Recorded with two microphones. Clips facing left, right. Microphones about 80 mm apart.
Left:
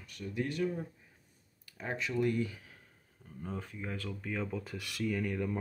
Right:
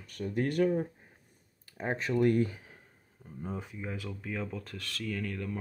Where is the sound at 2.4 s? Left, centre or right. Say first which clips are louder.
Right 3 dB; right.